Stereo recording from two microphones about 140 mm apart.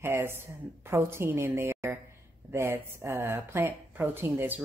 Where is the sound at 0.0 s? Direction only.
15° right (ahead or behind).